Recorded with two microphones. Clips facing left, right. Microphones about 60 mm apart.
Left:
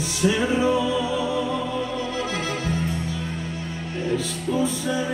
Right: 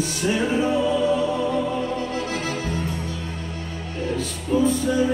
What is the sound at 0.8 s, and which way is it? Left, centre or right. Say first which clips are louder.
Music: right 3 dB; right.